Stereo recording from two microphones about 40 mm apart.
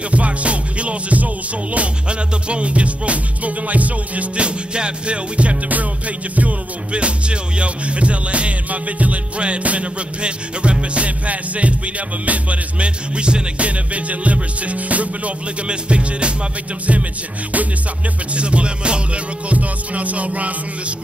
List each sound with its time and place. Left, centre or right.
0.1 s music: right
4.7 s music: right
5.7 s music: right
18.3 s music: right